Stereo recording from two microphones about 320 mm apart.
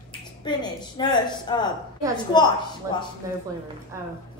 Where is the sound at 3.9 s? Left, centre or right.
Centre.